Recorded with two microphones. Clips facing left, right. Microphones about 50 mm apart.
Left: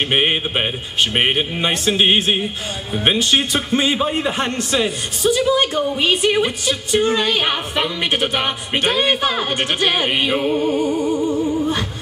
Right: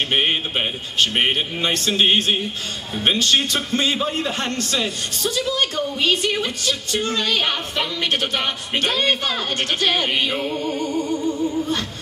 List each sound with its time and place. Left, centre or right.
0.1 s a man's voice: left